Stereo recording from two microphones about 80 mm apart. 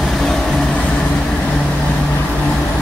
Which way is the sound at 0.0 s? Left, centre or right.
Centre.